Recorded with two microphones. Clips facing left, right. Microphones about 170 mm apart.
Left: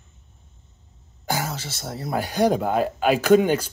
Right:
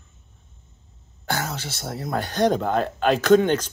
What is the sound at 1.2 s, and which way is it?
Speech, 10° left (ahead or behind).